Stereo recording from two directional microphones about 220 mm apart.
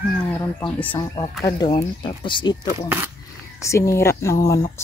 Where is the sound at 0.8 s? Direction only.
5° left (ahead or behind).